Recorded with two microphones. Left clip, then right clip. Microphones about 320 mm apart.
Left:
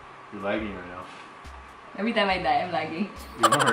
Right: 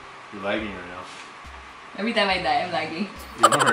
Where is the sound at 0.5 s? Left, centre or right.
Centre.